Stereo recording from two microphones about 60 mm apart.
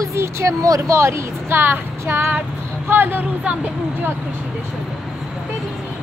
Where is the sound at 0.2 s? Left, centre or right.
Right.